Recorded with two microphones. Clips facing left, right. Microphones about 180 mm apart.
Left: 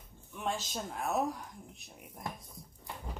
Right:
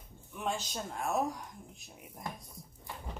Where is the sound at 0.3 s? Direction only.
Centre (ahead or behind).